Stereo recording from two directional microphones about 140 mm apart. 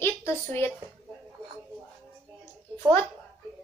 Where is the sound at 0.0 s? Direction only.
15° left (ahead or behind).